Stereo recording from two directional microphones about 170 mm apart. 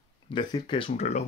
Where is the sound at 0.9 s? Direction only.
40° left (ahead or behind).